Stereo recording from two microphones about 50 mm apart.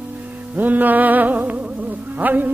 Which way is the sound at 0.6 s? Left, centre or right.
Right.